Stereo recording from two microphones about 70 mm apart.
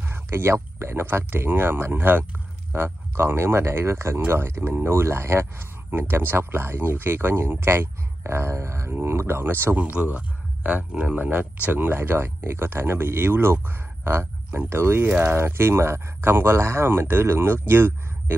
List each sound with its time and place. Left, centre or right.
0.1 s speech: right
9.8 s speech: right
15.0 s speech: right
15.3 s speech: right